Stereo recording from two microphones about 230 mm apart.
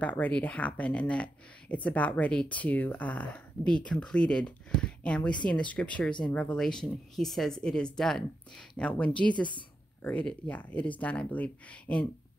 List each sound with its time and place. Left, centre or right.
0.0 s speech: centre
9.3 s a woman's voice: centre
10.0 s speech: centre